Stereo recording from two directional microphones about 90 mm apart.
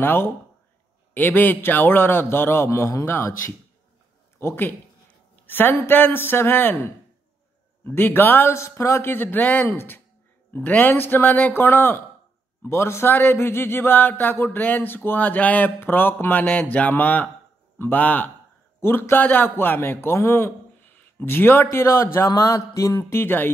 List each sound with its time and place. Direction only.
0.0 s speech: 25° left (ahead or behind)